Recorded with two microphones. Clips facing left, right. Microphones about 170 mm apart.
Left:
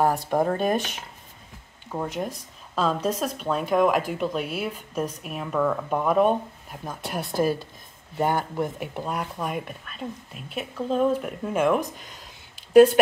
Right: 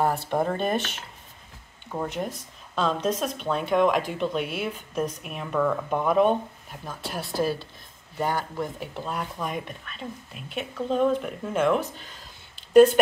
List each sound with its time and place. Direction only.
0.0 s speech: 10° left (ahead or behind)
1.9 s speech: 5° left (ahead or behind)
6.8 s speech: 20° left (ahead or behind)
7.3 s speech: 50° left (ahead or behind)
8.3 s speech: 20° left (ahead or behind)
8.7 s speech: 10° left (ahead or behind)
12.5 s a sound: 10° left (ahead or behind)